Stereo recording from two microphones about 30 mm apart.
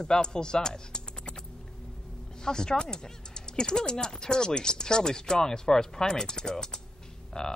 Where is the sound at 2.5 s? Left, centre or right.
Left.